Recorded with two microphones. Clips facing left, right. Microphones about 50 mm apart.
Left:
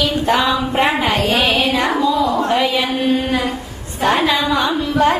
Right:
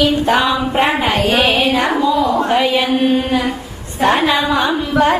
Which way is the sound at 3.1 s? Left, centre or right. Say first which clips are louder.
Right 2 dB; right.